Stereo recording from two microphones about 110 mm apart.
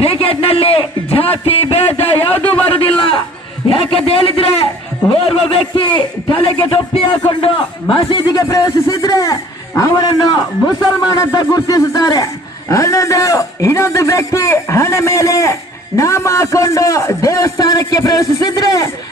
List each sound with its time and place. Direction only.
0.0 s a sound: 60° left (ahead or behind)
3.9 s a man's voice: 60° left (ahead or behind)
8.4 s a man's voice: 30° left (ahead or behind)